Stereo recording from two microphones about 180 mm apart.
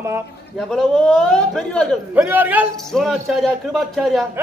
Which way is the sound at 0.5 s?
Centre (ahead or behind).